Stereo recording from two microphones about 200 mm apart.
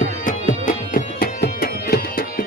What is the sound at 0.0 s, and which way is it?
Music, 40° left (ahead or behind).